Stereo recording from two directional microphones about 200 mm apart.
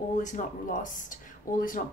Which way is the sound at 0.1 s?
40° left (ahead or behind).